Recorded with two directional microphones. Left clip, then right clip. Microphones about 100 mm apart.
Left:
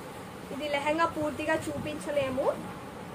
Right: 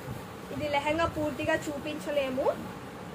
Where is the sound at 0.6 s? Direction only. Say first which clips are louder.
Even; 15° left (ahead or behind).